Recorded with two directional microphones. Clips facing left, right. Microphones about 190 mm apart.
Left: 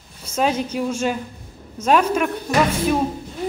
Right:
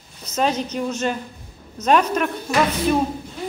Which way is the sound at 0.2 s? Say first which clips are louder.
Left 1 dB; 10° left (ahead or behind).